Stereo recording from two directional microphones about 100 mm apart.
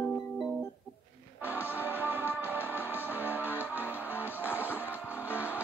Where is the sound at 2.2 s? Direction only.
20° left (ahead or behind).